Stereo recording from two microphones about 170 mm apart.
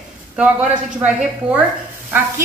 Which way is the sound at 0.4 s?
5° right (ahead or behind).